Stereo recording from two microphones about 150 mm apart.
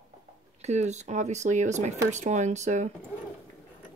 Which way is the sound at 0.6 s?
50° right (ahead or behind).